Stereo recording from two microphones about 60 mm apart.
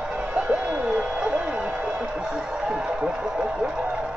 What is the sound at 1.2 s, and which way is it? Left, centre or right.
Music, right.